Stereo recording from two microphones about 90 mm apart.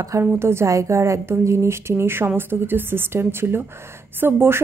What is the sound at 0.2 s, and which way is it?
A woman's voice, 30° right (ahead or behind).